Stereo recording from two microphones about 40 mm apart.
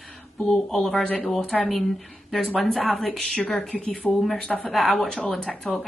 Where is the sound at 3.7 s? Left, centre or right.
Centre.